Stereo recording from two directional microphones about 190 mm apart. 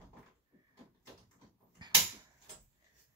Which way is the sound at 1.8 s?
20° right (ahead or behind).